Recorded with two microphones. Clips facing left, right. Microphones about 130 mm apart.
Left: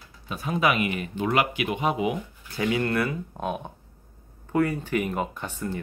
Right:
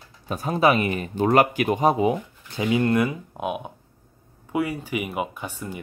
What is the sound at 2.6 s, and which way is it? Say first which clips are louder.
Speech: right 4 dB; 25° right (ahead or behind).